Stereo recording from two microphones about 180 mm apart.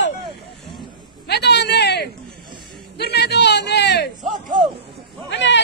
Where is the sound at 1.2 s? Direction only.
70° left (ahead or behind).